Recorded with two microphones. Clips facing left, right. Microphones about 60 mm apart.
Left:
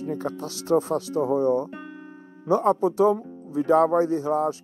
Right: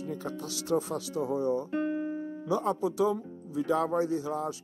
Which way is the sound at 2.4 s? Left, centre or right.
Left.